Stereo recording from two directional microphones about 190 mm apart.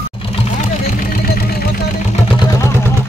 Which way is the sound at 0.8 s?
50° left (ahead or behind).